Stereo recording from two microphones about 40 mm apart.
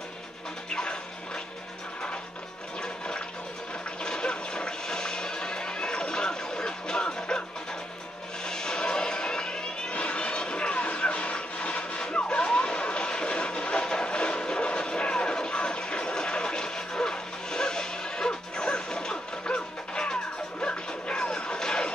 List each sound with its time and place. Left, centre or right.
0.7 s music: left
2.8 s water: left
4.0 s music: left
8.5 s music: centre
9.9 s a sound: left
20.6 s music: left